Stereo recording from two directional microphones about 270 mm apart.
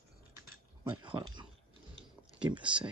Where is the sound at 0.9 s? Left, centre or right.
Centre.